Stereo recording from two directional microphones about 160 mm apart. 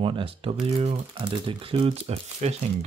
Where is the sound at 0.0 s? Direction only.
35° right (ahead or behind).